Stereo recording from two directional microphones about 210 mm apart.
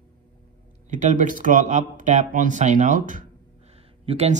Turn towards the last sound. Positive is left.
turn(degrees=-30)  # may be behind; listen again after turning